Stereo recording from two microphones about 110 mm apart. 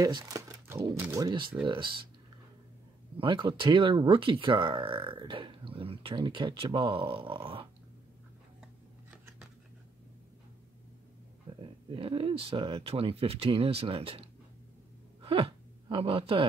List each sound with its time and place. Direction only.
0.0 s speech: 35° right (ahead or behind)
3.2 s speech: 50° right (ahead or behind)
11.5 s a sound: 50° right (ahead or behind)
11.9 s speech: 55° right (ahead or behind)
15.2 s speech: 55° right (ahead or behind)